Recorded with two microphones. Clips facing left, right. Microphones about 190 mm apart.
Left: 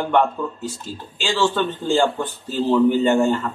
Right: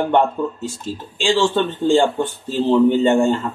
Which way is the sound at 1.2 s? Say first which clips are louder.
Right 3 dB; 30° right (ahead or behind).